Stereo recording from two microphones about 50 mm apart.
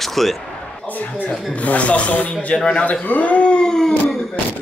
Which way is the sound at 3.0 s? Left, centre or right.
Left.